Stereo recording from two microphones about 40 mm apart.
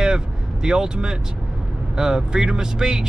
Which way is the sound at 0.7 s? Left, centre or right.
Centre.